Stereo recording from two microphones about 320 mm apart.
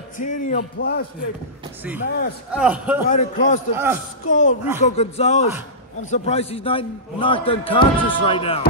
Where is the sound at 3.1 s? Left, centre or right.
Left.